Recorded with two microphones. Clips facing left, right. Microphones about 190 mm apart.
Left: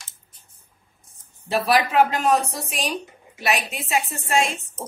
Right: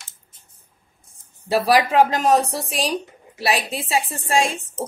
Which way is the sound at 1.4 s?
35° right (ahead or behind).